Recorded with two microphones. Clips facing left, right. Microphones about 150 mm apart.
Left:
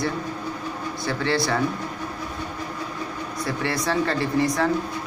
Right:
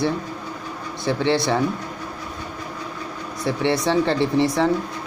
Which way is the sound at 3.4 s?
25° right (ahead or behind).